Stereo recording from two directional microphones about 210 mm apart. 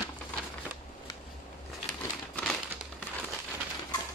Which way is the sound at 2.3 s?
5° left (ahead or behind).